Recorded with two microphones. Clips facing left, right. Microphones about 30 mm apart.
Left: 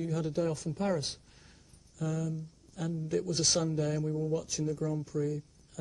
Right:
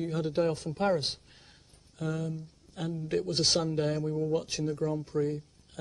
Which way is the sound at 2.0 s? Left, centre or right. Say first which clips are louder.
Right 1 dB; right.